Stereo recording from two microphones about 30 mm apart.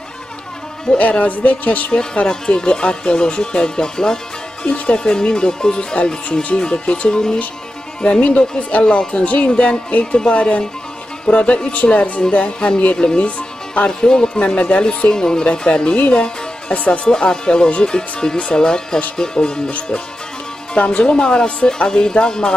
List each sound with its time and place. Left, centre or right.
0.9 s speech: left
1.2 s speech: left
2.2 s speech: left
4.6 s speech: left
5.0 s speech: left
8.0 s speech: left
8.8 s speech: left
12.5 s speech: left
14.4 s speech: left
16.1 s speech: left
17.0 s speech: left
20.7 s speech: left